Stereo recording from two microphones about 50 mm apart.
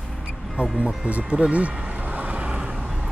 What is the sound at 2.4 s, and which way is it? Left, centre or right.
Vehicle, centre.